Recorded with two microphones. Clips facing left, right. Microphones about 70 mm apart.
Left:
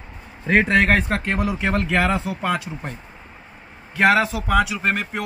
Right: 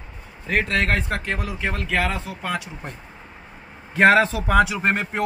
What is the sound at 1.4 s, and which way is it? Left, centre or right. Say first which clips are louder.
Speech: left 6 dB; centre.